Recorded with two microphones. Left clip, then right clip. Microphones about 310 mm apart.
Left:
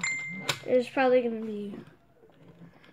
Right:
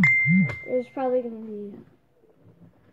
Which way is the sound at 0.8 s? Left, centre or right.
Left.